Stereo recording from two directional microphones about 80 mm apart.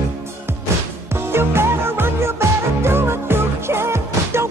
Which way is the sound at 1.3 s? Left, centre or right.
Right.